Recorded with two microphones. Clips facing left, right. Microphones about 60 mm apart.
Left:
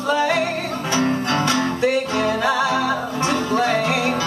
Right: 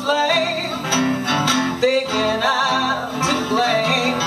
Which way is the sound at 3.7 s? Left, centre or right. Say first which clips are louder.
Right 1 dB; right.